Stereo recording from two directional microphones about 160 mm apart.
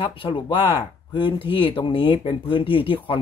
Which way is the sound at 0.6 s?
15° right (ahead or behind).